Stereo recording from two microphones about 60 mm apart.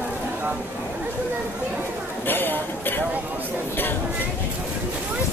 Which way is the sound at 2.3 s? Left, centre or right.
Left.